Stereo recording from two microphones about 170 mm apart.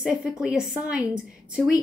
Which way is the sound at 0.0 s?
Centre (ahead or behind).